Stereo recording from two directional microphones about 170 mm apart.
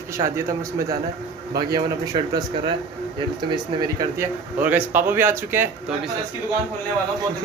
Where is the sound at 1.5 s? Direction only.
25° right (ahead or behind).